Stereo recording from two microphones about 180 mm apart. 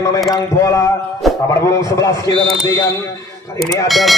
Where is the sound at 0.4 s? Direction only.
15° left (ahead or behind).